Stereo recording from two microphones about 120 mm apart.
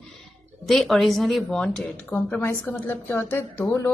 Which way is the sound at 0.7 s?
Centre (ahead or behind).